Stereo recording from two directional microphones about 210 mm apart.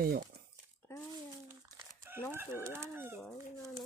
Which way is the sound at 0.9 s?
10° left (ahead or behind).